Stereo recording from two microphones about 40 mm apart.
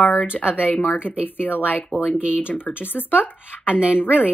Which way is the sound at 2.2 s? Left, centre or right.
Right.